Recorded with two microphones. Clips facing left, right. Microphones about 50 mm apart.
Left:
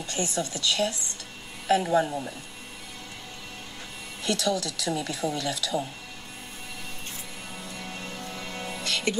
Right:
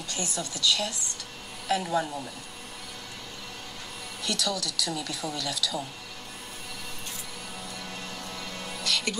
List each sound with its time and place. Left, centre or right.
0.0 s speech: left
4.2 s speech: left
7.8 s music: left